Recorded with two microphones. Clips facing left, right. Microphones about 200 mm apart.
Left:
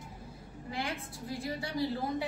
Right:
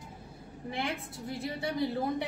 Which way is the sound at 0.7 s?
25° right (ahead or behind).